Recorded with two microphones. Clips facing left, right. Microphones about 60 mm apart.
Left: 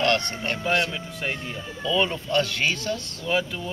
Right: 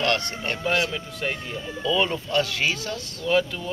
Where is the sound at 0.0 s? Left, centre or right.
Centre.